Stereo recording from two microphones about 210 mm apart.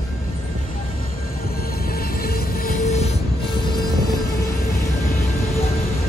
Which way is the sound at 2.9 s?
30° left (ahead or behind).